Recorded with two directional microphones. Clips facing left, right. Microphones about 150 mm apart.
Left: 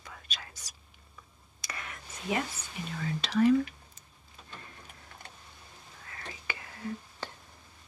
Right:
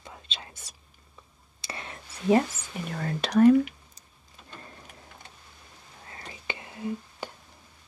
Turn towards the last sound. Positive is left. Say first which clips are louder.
# right 5 dB
turn(degrees=-20)  # may be behind; listen again after turning